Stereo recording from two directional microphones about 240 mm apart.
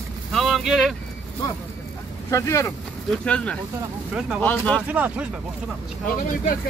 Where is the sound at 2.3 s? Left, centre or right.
Centre.